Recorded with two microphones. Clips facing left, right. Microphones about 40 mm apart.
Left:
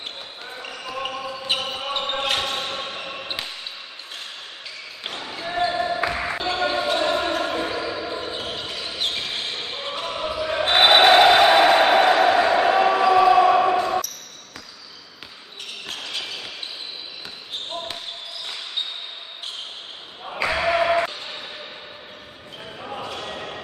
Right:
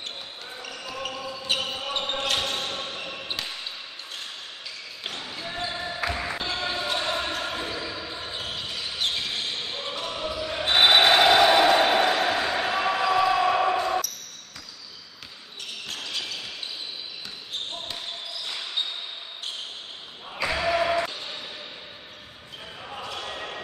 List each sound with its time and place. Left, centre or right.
0.5 s basketball bounce: left
5.0 s basketball bounce: centre
15.9 s a sound: centre
20.2 s basketball bounce: left
21.1 s a sound: centre
22.8 s basketball bounce: left